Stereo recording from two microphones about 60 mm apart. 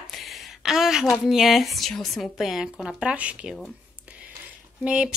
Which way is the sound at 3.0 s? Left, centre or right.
Centre.